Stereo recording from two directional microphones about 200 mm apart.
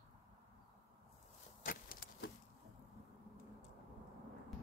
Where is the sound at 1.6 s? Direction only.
45° left (ahead or behind).